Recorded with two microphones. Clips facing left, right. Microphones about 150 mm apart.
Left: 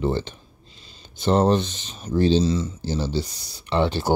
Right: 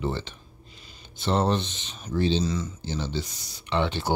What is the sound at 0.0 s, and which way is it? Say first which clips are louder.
Speech: left 6 dB; 35° left (ahead or behind).